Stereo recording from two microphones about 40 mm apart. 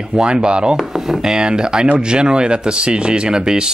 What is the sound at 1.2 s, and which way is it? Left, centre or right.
Speech, centre.